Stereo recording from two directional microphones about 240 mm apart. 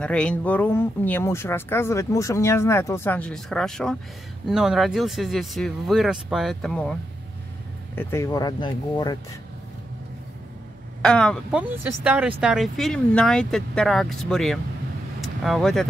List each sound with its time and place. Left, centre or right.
0.0 s speech: centre
8.0 s speech: centre
11.0 s speech: centre